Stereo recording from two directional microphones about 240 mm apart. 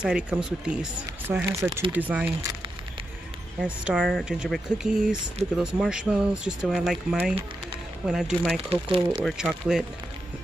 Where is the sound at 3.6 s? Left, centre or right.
Centre.